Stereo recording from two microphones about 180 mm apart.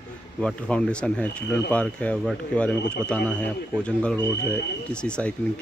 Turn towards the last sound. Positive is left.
turn(degrees=5)  # may be behind; listen again after turning